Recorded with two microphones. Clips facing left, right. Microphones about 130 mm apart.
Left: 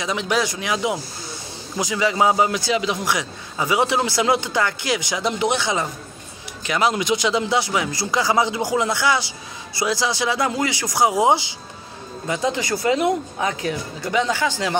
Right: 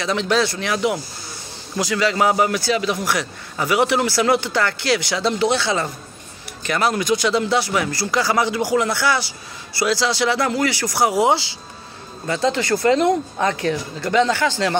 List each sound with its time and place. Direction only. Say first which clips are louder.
0.0 s a man's voice: right 3 dB; 15° left (ahead or behind)